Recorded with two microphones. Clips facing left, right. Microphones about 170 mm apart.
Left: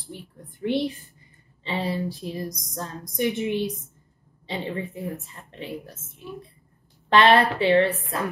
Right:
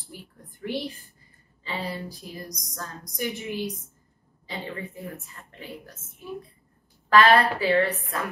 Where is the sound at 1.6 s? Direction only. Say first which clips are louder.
Left 5 dB; 25° left (ahead or behind).